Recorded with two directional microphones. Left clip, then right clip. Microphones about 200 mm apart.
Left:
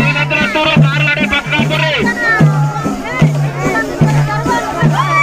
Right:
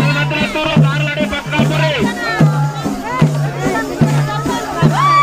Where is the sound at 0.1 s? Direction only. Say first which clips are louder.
Left 4 dB; 35° left (ahead or behind).